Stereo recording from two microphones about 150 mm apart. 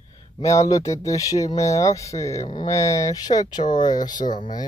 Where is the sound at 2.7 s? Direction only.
20° left (ahead or behind).